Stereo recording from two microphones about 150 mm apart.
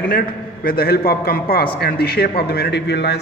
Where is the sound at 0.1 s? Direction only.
80° left.